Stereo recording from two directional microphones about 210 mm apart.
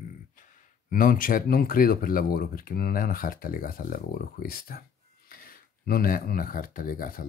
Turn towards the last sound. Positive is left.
turn(degrees=40)  # may be behind; listen again after turning